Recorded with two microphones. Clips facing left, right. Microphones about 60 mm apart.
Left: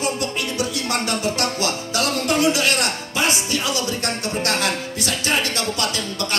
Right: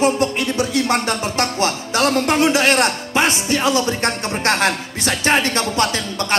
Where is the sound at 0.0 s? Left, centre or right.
Right.